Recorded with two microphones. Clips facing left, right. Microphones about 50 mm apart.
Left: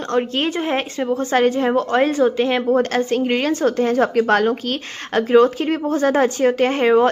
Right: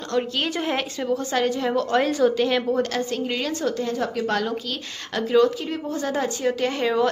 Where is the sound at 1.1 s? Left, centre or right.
Left.